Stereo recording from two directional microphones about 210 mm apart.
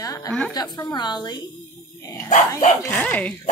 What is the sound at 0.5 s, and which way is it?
Speech, 20° left (ahead or behind).